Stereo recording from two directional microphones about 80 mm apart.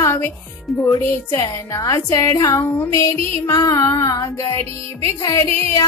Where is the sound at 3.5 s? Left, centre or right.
Left.